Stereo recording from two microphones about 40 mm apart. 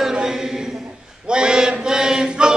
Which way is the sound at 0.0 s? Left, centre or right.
Centre.